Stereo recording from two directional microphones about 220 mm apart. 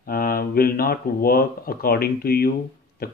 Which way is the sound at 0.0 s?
40° left (ahead or behind).